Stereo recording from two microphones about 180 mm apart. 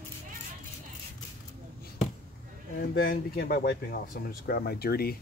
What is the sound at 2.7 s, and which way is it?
Speech, 55° left (ahead or behind).